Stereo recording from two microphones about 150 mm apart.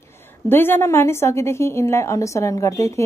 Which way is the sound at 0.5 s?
15° left (ahead or behind).